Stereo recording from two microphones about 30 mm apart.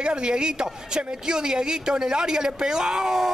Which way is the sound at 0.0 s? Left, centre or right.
Right.